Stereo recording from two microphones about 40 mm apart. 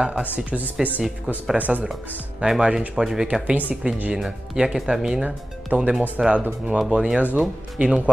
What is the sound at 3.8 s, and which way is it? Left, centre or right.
Speech, right.